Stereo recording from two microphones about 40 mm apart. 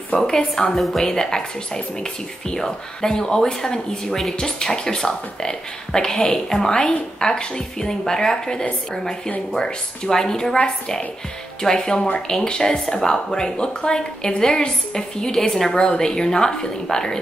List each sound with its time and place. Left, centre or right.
0.4 s speech: centre
11.6 s speech: centre